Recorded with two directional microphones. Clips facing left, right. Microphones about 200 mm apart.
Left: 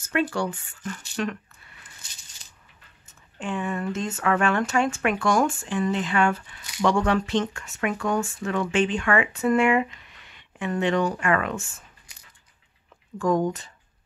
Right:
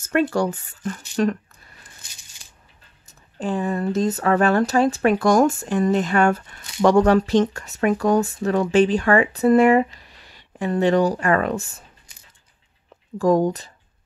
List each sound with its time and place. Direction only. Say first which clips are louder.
0.1 s speech: right 5 dB; 40° right (ahead or behind)
3.1 s speech: right 6 dB; 35° right (ahead or behind)
13.2 s speech: right 5 dB; 35° right (ahead or behind)